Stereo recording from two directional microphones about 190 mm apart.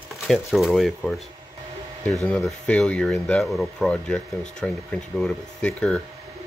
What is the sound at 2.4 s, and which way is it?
Speech, 5° left (ahead or behind).